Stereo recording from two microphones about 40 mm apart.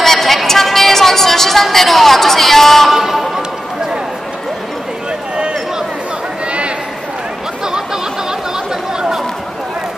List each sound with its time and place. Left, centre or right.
0.0 s a sound: centre
2.9 s music: centre
7.6 s chatter: centre